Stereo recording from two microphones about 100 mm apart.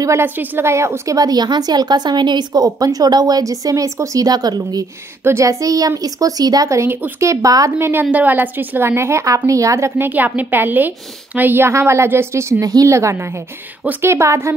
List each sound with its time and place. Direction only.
0.0 s a woman's voice: 30° right (ahead or behind)
5.2 s a woman's voice: 30° right (ahead or behind)
7.9 s a woman's voice: 15° right (ahead or behind)